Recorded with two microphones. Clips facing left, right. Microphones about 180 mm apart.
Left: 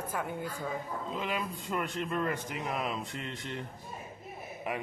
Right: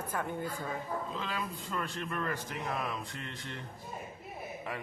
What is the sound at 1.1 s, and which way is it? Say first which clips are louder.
A man's voice: left 3 dB; 20° left (ahead or behind).